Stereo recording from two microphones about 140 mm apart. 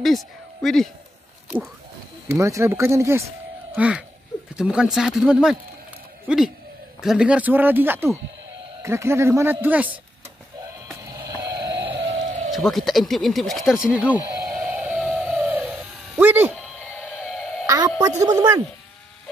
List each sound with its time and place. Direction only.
0.0 s speech: centre (ahead or behind)
2.2 s speech: 20° right (ahead or behind)
3.7 s speech: 10° right (ahead or behind)
11.1 s a sound: 25° right (ahead or behind)
11.8 s music: 35° right (ahead or behind)
12.4 s speech: centre (ahead or behind)
14.5 s vehicle: 10° right (ahead or behind)
17.0 s a sound: 5° right (ahead or behind)
17.6 s a sound: 30° right (ahead or behind)
18.2 s speech: 30° right (ahead or behind)